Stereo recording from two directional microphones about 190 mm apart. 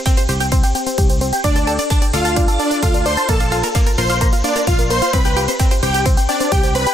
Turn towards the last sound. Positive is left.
turn(degrees=0)  # may be behind; listen again after turning